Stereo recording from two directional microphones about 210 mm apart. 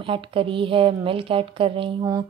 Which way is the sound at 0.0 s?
25° right (ahead or behind).